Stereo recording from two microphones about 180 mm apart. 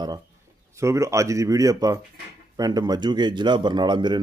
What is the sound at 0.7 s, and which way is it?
Speech, 15° right (ahead or behind).